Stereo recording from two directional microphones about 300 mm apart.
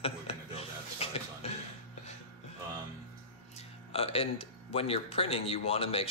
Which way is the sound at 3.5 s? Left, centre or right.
Centre.